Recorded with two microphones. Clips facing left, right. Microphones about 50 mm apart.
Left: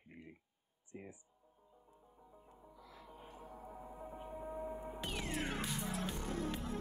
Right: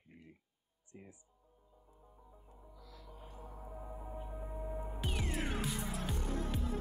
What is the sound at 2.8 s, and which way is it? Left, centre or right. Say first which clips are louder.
Music: left 1 dB; left.